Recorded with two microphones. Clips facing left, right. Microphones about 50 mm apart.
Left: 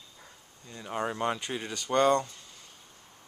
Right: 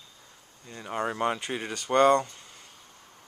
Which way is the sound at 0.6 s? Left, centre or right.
Centre.